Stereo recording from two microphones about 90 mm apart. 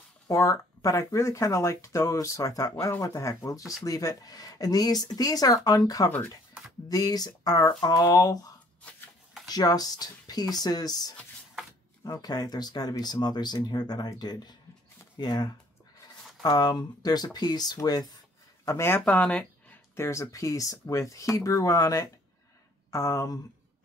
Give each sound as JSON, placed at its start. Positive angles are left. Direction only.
{"t": 0.3, "sound": "speech", "side_deg": 35}
{"t": 6.0, "sound": "speech", "side_deg": 30}
{"t": 6.9, "sound": "speech", "side_deg": 45}
{"t": 18.7, "sound": "speech", "side_deg": 30}
{"t": 18.9, "sound": "speech", "side_deg": 15}
{"t": 20.0, "sound": "speech", "side_deg": 35}